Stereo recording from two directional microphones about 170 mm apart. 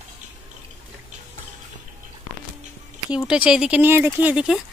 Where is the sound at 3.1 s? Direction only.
5° right (ahead or behind).